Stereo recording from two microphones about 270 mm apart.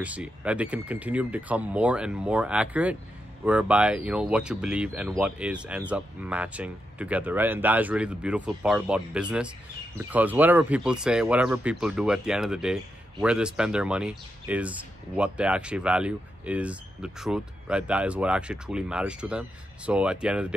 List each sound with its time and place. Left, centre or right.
0.0 s speech: centre